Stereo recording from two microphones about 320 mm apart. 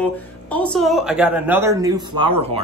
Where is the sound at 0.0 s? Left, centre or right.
Centre.